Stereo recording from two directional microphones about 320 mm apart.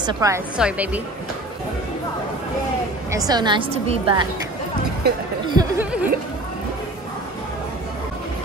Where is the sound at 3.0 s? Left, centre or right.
Centre.